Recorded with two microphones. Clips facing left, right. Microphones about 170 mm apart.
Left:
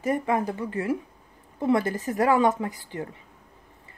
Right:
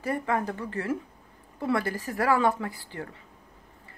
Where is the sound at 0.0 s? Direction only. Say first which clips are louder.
Left 3 dB; 15° left (ahead or behind).